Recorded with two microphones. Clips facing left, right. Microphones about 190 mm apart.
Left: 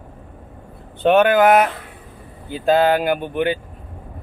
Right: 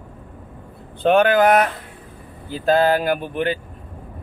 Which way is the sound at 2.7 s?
5° left (ahead or behind).